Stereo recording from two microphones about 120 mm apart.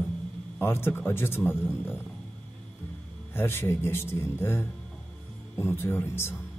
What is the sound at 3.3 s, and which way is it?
Speech, 20° left (ahead or behind).